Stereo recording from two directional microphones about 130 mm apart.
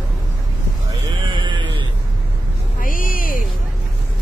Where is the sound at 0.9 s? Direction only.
35° right (ahead or behind).